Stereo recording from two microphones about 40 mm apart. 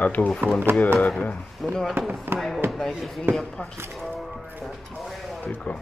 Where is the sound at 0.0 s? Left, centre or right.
Left.